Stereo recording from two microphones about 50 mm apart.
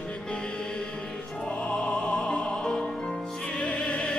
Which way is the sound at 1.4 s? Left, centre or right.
Left.